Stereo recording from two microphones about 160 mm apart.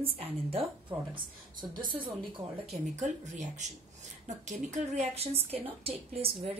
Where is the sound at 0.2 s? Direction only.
35° right (ahead or behind).